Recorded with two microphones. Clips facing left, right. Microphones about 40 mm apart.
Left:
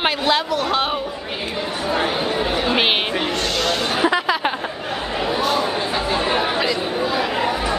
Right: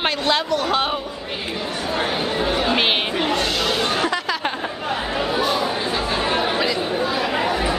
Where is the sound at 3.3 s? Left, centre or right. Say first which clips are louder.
Even; centre.